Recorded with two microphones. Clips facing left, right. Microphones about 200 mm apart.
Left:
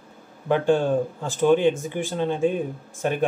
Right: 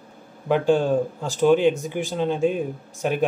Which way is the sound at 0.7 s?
15° right (ahead or behind).